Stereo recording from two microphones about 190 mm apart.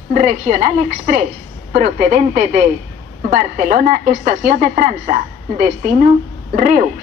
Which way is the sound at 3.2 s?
40° right (ahead or behind).